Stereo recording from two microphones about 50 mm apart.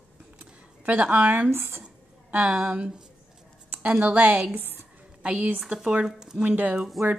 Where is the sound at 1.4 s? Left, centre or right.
Right.